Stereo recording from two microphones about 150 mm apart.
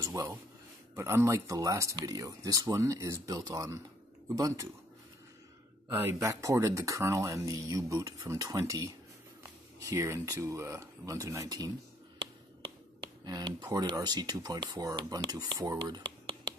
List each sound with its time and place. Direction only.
0.0 s speech: 20° right (ahead or behind)
5.9 s speech: 15° right (ahead or behind)
13.2 s speech: 30° right (ahead or behind)